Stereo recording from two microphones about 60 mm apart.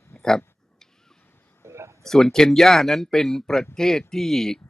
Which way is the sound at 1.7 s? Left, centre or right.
Right.